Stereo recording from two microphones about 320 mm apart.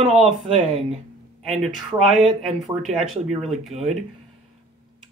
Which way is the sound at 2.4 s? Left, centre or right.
Centre.